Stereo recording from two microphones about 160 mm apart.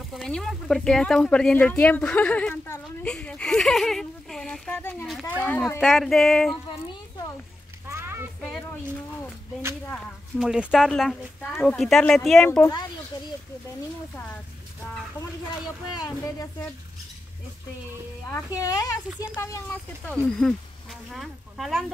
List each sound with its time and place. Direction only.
0.1 s speech: 5° left (ahead or behind)
7.9 s a sound: 15° right (ahead or behind)
10.4 s speech: 5° right (ahead or behind)
12.4 s speech: 20° left (ahead or behind)
15.9 s speech: 25° left (ahead or behind)
18.3 s speech: 20° left (ahead or behind); by 21.9 s centre (ahead or behind)